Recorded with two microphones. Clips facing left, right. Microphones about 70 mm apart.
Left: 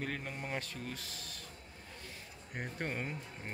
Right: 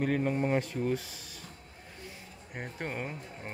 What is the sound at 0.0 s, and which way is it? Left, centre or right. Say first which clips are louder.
Speech: right 12 dB; centre.